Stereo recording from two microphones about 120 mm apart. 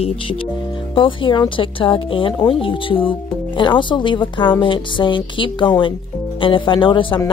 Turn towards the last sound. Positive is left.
turn(degrees=45)  # may be behind; listen again after turning